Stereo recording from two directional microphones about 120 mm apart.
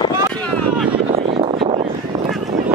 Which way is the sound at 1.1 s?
55° right (ahead or behind).